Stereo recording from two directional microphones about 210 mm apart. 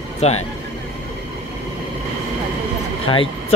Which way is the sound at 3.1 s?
25° left (ahead or behind).